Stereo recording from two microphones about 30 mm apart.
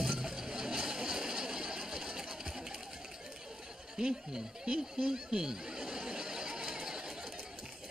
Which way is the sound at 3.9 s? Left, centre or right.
Right.